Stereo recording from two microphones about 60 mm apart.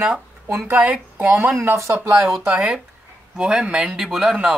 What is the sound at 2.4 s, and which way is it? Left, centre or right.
Speech, centre.